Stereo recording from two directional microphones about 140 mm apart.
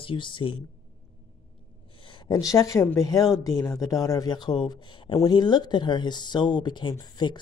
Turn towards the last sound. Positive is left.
turn(degrees=30)  # may be behind; listen again after turning